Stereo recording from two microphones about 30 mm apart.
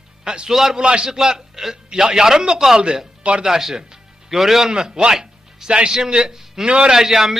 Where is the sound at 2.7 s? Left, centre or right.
Right.